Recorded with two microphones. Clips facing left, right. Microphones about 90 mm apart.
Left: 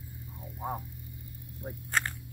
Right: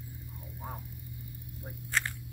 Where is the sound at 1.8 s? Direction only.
45° left (ahead or behind).